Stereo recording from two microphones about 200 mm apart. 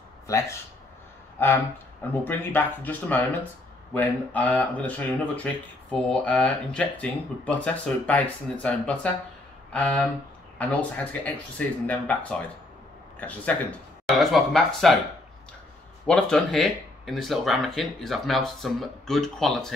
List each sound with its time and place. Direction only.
0.3 s speech: 15° left (ahead or behind)
13.2 s speech: 5° left (ahead or behind)
16.1 s speech: 5° left (ahead or behind)